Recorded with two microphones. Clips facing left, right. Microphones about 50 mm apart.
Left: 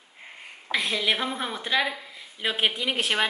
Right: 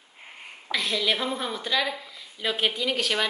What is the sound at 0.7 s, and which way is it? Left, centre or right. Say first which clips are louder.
A woman's voice: left 1 dB; centre.